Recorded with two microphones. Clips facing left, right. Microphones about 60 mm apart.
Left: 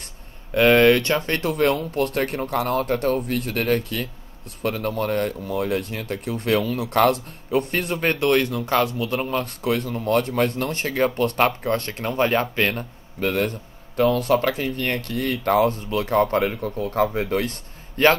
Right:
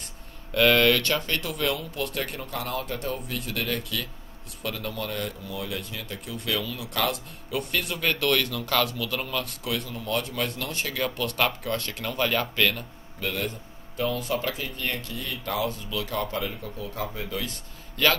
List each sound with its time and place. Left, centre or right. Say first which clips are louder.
0.6 s speech: left 5 dB; left